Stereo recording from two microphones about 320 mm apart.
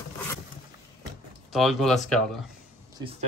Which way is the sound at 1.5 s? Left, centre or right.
Centre.